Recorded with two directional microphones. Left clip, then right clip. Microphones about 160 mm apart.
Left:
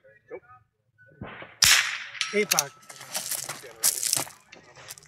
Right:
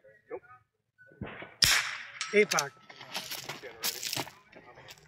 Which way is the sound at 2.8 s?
20° left (ahead or behind).